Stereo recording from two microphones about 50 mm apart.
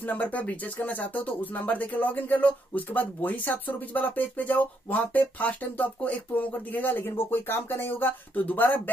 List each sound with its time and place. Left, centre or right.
0.0 s speech: left
8.5 s speech: left